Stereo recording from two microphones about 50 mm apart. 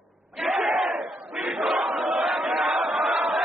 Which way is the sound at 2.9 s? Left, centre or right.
Centre.